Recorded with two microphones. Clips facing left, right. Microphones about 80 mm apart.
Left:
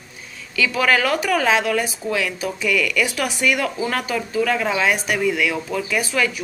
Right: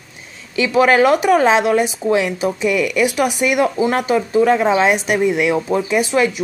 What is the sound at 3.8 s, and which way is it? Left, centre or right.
Speech, right.